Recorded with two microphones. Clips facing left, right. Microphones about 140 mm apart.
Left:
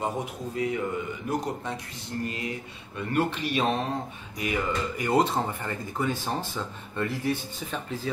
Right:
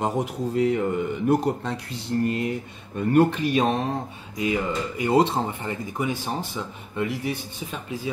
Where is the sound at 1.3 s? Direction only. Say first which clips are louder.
Right 8 dB; 65° right (ahead or behind).